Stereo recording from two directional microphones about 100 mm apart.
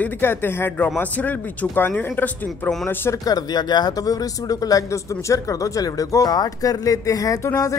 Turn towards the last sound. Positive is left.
turn(degrees=35)  # may be behind; listen again after turning